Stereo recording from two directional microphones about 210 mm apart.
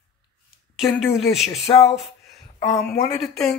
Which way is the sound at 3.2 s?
Centre (ahead or behind).